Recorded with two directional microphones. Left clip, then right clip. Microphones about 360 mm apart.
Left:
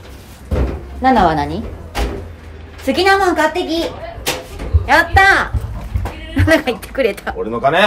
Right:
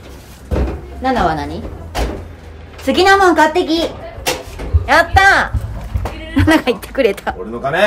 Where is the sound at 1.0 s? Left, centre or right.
Centre.